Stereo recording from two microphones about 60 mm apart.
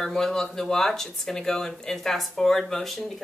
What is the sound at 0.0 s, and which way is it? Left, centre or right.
Speech, centre.